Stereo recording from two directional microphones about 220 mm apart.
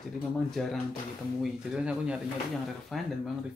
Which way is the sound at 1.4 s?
5° right (ahead or behind).